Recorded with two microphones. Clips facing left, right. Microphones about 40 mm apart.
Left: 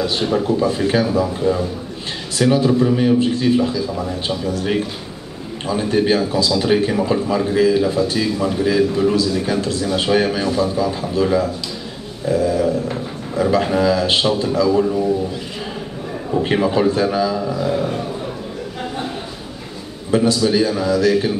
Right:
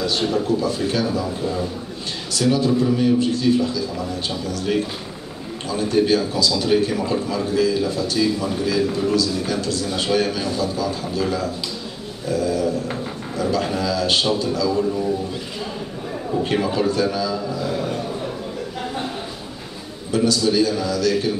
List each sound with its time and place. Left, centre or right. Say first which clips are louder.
0.0 s speech: left 2 dB; centre
16.4 s speech: left 5 dB; left
20.1 s speech: left 3 dB; left